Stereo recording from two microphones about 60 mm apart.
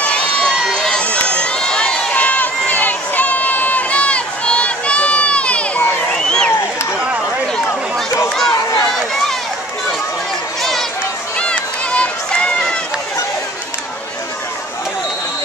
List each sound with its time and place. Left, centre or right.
0.0 s run: centre
6.1 s a sound: centre
7.0 s a sound: right
8.4 s run: centre
10.6 s run: centre
11.3 s run: centre